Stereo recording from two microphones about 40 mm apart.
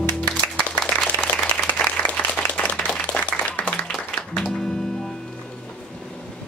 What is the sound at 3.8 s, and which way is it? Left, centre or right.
Music, centre.